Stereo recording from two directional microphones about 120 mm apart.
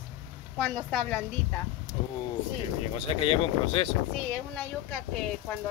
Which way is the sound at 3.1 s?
50° left (ahead or behind).